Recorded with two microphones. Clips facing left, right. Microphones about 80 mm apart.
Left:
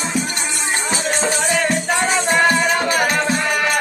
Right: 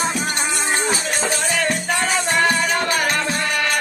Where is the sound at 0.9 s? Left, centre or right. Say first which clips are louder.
Left 3 dB; left.